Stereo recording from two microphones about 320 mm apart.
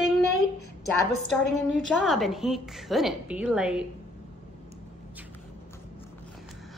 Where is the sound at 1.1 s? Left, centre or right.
Left.